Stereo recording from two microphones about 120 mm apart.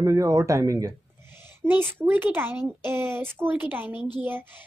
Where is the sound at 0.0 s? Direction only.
25° right (ahead or behind).